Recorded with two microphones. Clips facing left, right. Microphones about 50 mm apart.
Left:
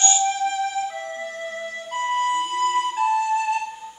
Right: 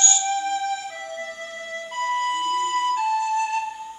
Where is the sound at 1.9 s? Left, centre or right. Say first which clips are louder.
Left 2 dB; centre.